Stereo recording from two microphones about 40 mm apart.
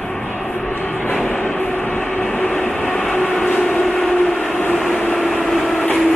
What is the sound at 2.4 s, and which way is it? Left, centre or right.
Train, left.